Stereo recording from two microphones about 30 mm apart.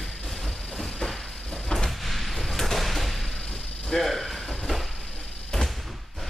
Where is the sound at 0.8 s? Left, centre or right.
Centre.